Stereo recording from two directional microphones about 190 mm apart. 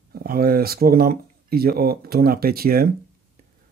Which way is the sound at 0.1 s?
50° right (ahead or behind).